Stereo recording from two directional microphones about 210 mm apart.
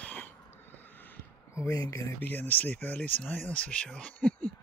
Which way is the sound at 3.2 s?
5° left (ahead or behind).